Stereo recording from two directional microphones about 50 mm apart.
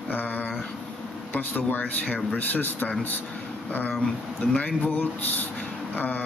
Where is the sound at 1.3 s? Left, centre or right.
Left.